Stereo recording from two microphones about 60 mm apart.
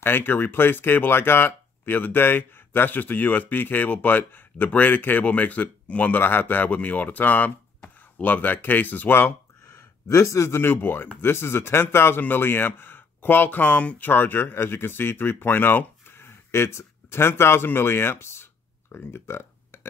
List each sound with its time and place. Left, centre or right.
0.0 s speech: left
6.1 s speech: left
9.7 s speech: left